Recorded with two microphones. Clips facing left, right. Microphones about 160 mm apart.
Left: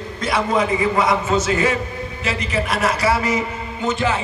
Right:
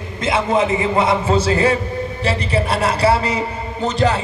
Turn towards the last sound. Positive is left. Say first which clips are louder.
# right 3 dB
turn(degrees=-35)  # may be behind; listen again after turning